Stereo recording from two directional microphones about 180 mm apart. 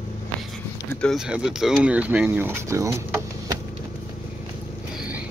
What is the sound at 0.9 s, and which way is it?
Speech, 5° left (ahead or behind).